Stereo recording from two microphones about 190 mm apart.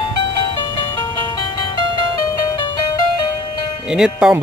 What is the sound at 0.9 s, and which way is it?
Music, 20° left (ahead or behind).